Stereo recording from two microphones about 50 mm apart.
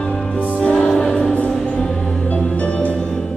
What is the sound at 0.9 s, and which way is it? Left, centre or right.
Music, centre.